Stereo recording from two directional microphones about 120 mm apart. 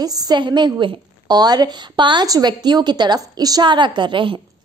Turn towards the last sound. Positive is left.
turn(degrees=-45)  # may be behind; listen again after turning